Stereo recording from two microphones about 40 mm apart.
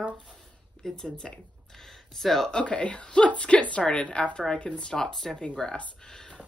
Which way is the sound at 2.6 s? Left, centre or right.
Left.